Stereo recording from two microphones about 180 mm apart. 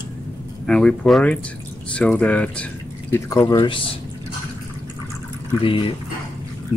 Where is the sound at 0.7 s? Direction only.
5° left (ahead or behind).